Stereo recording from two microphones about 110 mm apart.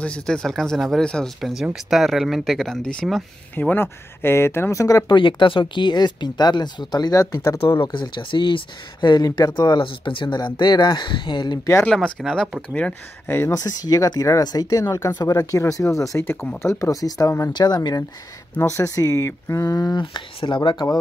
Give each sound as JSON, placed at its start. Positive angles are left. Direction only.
{"t": 0.0, "sound": "speech", "side_deg": 10}
{"t": 3.5, "sound": "speech", "side_deg": 20}
{"t": 5.1, "sound": "speech", "side_deg": 50}
{"t": 7.8, "sound": "speech", "side_deg": 45}
{"t": 11.8, "sound": "speech", "side_deg": 5}
{"t": 13.5, "sound": "speech", "side_deg": 35}
{"t": 18.6, "sound": "speech", "side_deg": 25}